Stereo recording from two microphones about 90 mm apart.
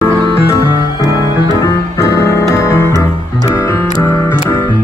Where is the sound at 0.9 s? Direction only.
40° left (ahead or behind).